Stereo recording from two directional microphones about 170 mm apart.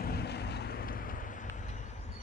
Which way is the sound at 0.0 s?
70° left (ahead or behind).